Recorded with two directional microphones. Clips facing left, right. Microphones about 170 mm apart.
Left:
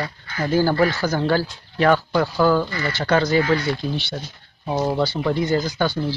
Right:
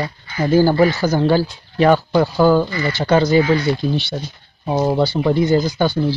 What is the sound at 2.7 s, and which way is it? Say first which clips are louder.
Speech: right 4 dB; 5° right (ahead or behind).